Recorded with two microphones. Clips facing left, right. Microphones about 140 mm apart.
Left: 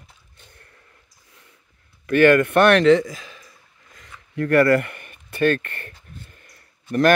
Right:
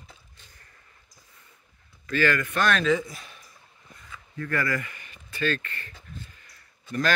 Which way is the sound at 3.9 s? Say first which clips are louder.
Left 10 dB; 70° left (ahead or behind).